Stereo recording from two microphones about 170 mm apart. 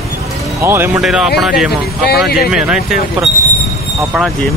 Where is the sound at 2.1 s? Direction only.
70° left (ahead or behind).